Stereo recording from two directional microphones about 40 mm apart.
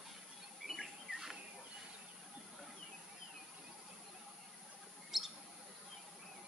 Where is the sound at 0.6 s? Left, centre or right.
Centre.